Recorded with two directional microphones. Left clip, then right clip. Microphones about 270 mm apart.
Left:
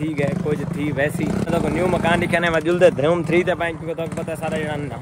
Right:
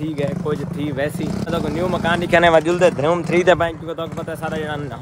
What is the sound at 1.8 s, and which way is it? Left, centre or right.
Speech, centre.